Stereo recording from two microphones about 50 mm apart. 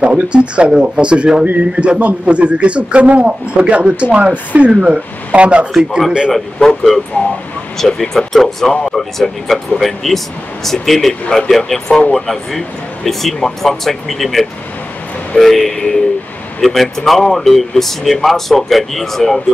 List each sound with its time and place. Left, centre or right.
0.0 s speech: right
5.7 s speech: centre
7.2 s speech: left
7.8 s speech: centre